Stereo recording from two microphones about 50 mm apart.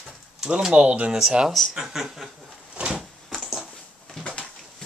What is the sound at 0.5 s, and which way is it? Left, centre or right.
Speech, centre.